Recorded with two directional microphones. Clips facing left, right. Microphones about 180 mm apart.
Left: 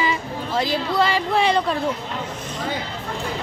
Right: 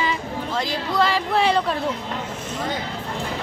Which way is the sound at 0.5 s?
Centre (ahead or behind).